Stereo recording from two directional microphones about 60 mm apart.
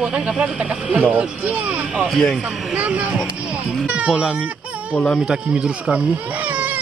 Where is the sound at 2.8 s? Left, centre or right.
Right.